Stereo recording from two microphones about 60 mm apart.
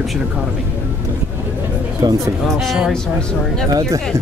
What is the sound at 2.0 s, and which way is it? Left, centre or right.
Speech, right.